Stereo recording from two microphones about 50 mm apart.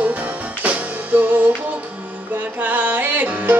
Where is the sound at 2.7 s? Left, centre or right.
Right.